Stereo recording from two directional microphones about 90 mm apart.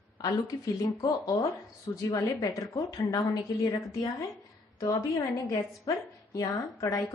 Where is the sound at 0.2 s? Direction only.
40° left (ahead or behind).